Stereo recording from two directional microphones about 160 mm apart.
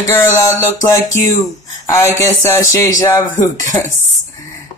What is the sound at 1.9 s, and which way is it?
Speech, 20° left (ahead or behind).